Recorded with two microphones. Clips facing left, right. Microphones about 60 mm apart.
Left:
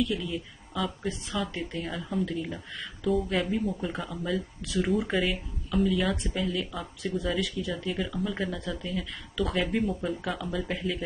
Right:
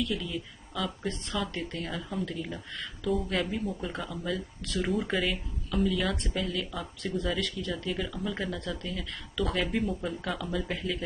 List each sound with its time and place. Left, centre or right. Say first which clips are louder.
0.0 s speech: left 3 dB; centre